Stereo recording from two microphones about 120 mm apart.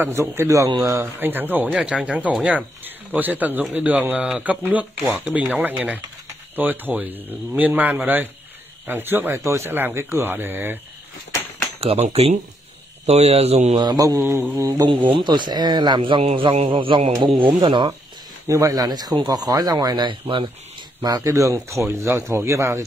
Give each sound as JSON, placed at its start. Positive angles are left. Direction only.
{"t": 0.0, "sound": "speech", "side_deg": -20}
{"t": 11.8, "sound": "speech", "side_deg": -60}
{"t": 13.7, "sound": "speech", "side_deg": -35}
{"t": 15.1, "sound": "a man's voice", "side_deg": -40}
{"t": 18.5, "sound": "speech", "side_deg": -25}
{"t": 21.0, "sound": "speech", "side_deg": -30}